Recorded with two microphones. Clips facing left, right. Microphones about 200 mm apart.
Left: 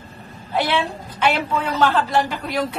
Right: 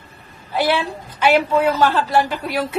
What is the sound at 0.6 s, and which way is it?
A woman's voice, centre (ahead or behind).